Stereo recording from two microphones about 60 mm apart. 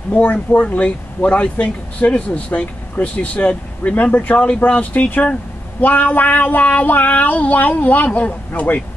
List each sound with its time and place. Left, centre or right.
0.1 s speech: left